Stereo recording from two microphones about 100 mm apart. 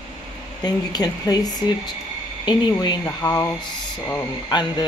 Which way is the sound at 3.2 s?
15° left (ahead or behind).